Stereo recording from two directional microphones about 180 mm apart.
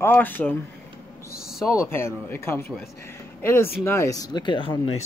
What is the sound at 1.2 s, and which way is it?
Speech, 55° left (ahead or behind).